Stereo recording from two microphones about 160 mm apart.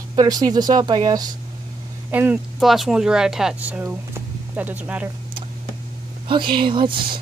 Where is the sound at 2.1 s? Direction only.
10° right (ahead or behind).